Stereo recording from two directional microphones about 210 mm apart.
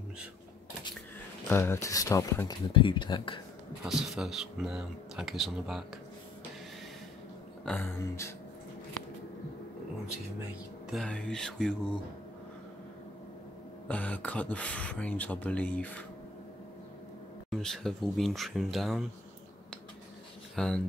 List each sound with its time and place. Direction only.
1.5 s speech: 10° left (ahead or behind)
3.8 s speech: centre (ahead or behind)
7.6 s speech: 10° left (ahead or behind)
10.9 s speech: centre (ahead or behind)
13.8 s speech: 5° left (ahead or behind)
17.5 s speech: centre (ahead or behind)
20.5 s speech: 5° left (ahead or behind)